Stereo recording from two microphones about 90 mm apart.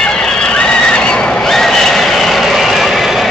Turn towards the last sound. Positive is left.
turn(degrees=0)  # may be behind; listen again after turning